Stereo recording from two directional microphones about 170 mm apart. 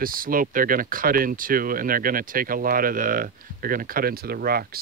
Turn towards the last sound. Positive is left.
turn(degrees=-65)  # may be behind; listen again after turning